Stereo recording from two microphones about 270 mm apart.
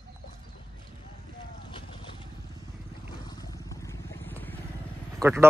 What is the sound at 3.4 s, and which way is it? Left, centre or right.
Vehicle, centre.